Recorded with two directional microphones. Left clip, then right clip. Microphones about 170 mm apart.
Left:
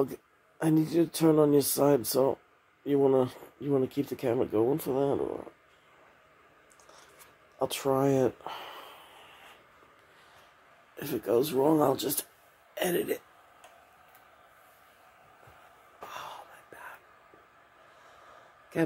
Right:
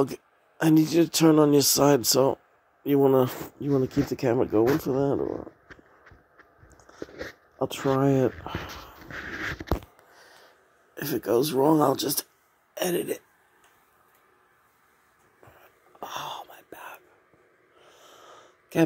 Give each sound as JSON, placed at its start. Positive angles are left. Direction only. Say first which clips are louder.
{"t": 0.0, "sound": "speech", "louder": "right 4 dB", "side_deg": -30}
{"t": 7.5, "sound": "speech", "louder": "right 2 dB", "side_deg": -45}
{"t": 11.0, "sound": "speech", "louder": "right 3 dB", "side_deg": -55}
{"t": 16.0, "sound": "wail", "louder": "right 7 dB", "side_deg": -50}